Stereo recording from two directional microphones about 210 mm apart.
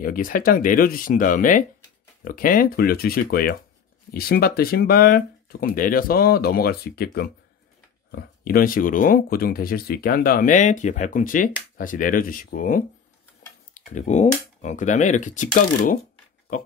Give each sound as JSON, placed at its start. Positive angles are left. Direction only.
{"t": 0.0, "sound": "speech", "side_deg": 40}